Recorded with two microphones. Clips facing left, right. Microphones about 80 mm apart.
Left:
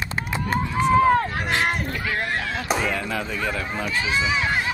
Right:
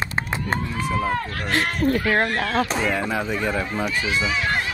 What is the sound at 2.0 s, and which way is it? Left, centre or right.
Speech, right.